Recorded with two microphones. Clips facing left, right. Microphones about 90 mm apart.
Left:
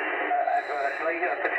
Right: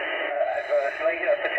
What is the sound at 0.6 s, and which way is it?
Radio, 5° left (ahead or behind).